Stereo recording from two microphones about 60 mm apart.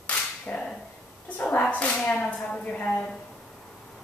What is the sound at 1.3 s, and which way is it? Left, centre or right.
A woman's voice, left.